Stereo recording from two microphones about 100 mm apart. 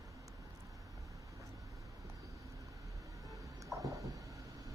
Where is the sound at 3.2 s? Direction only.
35° right (ahead or behind).